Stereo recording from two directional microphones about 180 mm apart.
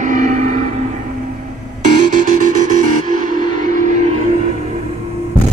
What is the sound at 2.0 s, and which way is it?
Music, 45° right (ahead or behind).